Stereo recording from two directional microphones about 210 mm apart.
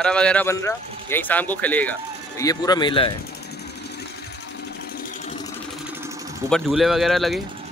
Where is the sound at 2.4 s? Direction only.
20° left (ahead or behind).